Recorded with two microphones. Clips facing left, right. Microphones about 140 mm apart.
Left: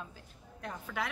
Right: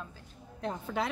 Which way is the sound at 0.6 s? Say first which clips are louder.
Right 5 dB; 30° right (ahead or behind).